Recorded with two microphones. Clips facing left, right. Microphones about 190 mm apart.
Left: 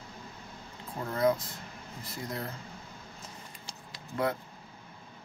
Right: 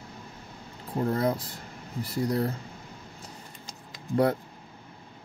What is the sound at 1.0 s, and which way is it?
Speech, 35° right (ahead or behind).